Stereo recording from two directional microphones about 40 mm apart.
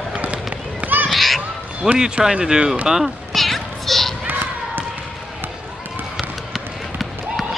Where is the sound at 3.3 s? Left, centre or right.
Centre.